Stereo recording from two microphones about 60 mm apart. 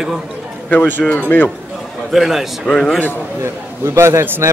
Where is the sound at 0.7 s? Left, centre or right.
Left.